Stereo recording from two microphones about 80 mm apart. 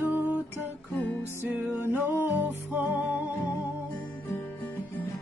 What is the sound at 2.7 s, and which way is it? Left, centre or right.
Music, right.